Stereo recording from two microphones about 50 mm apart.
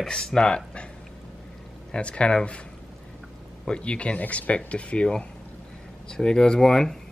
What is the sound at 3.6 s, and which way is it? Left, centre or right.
Speech, left.